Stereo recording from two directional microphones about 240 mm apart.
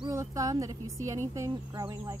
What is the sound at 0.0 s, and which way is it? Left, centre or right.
Speech, centre.